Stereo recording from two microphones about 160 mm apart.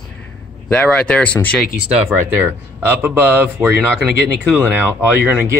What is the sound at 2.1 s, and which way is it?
Speech, 10° right (ahead or behind).